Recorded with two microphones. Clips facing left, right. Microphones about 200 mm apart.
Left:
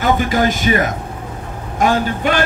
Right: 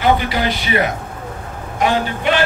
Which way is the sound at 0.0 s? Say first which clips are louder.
Left 1 dB; 45° left (ahead or behind).